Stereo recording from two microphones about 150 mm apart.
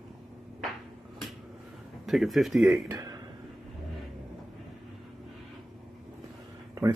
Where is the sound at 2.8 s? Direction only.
25° right (ahead or behind).